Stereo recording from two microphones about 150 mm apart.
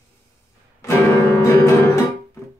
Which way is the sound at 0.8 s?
15° left (ahead or behind).